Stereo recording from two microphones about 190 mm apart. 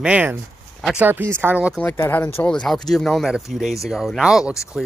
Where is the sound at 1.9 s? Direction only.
10° left (ahead or behind).